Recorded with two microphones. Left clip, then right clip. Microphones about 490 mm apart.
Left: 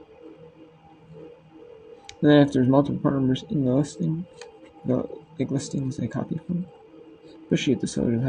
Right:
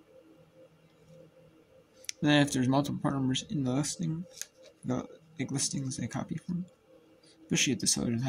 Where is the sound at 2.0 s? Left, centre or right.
Right.